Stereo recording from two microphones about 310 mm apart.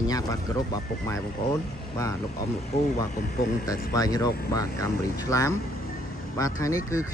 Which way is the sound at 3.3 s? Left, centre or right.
Left.